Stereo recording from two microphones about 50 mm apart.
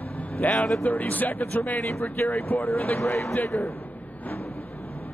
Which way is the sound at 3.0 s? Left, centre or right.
Left.